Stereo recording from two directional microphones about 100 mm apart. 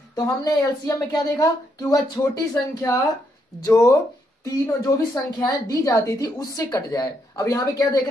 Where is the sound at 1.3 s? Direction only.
40° left (ahead or behind).